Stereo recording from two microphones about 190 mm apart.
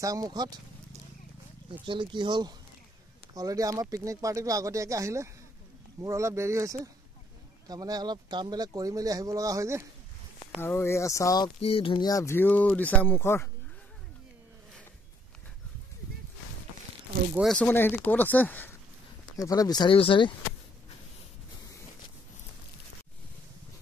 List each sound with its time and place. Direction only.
0.0 s speech: 20° right (ahead or behind)
1.7 s speech: 25° right (ahead or behind)
10.6 s speech: 15° left (ahead or behind)
17.4 s speech: 5° left (ahead or behind); by 20.3 s 25° left (ahead or behind)